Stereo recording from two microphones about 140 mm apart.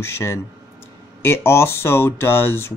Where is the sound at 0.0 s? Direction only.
20° left (ahead or behind).